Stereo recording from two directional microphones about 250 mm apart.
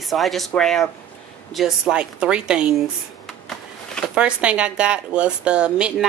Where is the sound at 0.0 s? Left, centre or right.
Centre.